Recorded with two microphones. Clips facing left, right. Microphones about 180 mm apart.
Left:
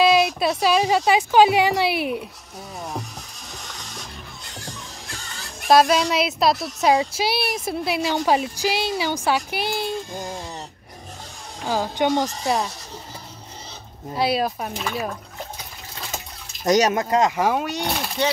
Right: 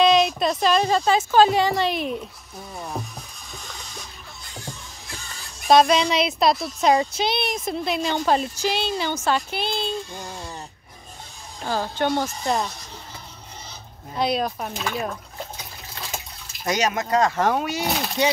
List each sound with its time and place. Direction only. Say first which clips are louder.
0.0 s speech: even; 5° left (ahead or behind)
5.7 s speech: even; 5° left (ahead or behind)
11.6 s speech: left 2 dB; 10° left (ahead or behind)
14.1 s speech: left 2 dB; 5° left (ahead or behind)
16.6 s speech: left 5 dB; 40° left (ahead or behind)
17.4 s speech: even; 5° left (ahead or behind)